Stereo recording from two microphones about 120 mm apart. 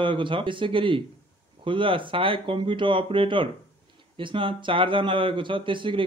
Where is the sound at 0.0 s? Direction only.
45° right (ahead or behind).